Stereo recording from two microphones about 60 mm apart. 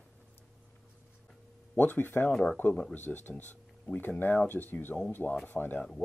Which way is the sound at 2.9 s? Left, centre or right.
Left.